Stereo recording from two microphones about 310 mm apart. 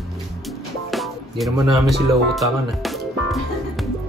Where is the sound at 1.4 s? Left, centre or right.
Centre.